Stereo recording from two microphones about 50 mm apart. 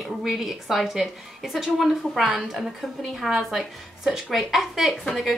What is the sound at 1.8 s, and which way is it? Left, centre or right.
Speech, centre.